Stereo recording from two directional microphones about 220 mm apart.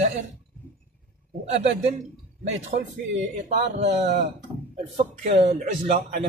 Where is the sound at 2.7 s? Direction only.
45° right (ahead or behind).